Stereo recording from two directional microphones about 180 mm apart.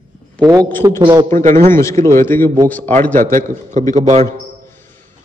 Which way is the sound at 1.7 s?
15° left (ahead or behind).